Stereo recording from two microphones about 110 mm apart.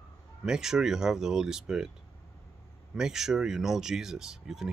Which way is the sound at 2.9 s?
5° right (ahead or behind).